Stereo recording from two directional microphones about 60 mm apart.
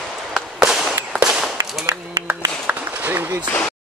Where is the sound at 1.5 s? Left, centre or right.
Right.